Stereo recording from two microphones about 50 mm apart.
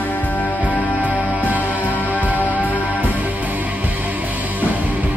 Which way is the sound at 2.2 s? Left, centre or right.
Right.